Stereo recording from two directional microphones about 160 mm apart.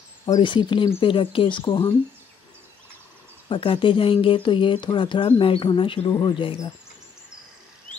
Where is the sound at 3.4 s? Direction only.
35° left (ahead or behind).